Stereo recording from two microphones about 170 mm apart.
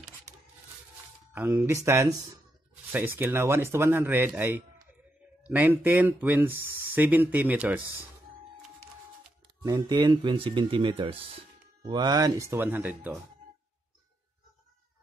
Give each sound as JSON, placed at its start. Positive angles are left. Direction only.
{"t": 1.3, "sound": "speech", "side_deg": -15}
{"t": 9.7, "sound": "speech", "side_deg": -25}